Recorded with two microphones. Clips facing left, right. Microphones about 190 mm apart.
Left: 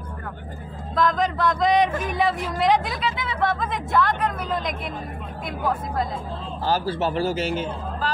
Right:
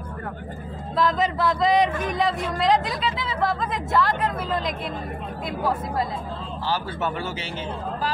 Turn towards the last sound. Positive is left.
turn(degrees=40)  # may be behind; listen again after turning